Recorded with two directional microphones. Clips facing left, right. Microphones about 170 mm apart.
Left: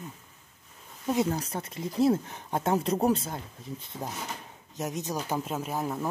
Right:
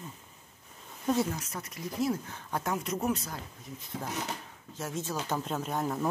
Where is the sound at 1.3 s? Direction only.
30° left (ahead or behind).